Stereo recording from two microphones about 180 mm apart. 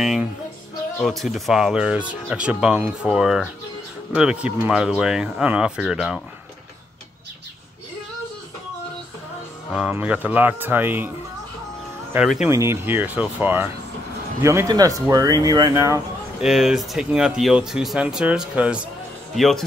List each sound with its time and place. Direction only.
0.0 s speech: centre (ahead or behind)
9.7 s speech: 5° right (ahead or behind)
12.4 s speech: 15° right (ahead or behind)
16.3 s speech: centre (ahead or behind)